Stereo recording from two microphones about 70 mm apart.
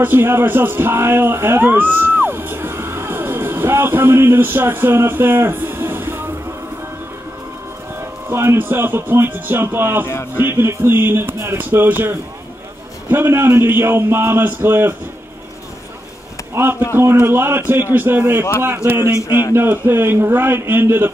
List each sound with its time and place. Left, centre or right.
0.0 s speech: right
8.0 s speech: right
16.6 s speech: right
19.2 s speech: left
19.5 s speech: right